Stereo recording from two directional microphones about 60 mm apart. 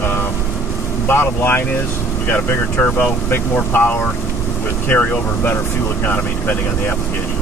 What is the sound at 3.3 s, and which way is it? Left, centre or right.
Speech, left.